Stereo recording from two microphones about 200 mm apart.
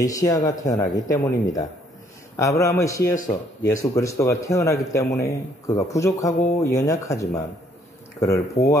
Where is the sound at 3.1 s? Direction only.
40° left (ahead or behind).